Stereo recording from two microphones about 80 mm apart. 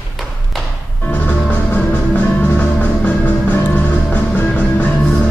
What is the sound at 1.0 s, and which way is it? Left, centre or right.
Music, centre.